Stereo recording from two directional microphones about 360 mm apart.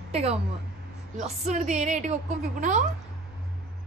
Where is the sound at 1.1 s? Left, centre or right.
Centre.